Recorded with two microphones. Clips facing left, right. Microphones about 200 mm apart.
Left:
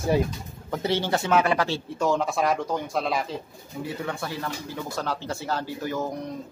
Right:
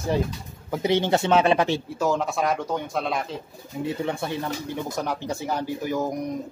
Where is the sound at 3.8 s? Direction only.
25° right (ahead or behind).